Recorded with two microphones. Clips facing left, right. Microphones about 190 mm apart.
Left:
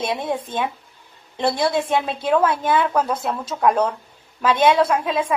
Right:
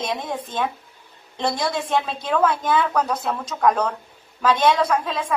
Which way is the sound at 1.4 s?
10° left (ahead or behind).